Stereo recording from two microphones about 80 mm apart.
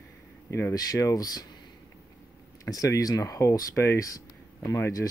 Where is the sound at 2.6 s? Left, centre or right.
Left.